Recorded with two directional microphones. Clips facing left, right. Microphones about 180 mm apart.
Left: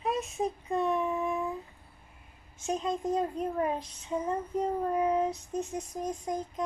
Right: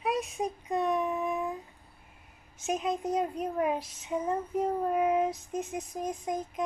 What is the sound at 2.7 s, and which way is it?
A child's voice, 15° right (ahead or behind).